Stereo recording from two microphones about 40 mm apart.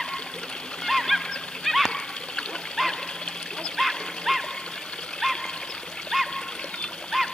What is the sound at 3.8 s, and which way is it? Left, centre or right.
Dog, centre.